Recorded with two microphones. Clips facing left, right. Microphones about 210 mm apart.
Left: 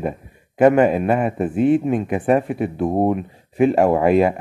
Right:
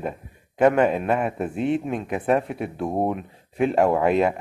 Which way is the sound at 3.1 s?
Centre (ahead or behind).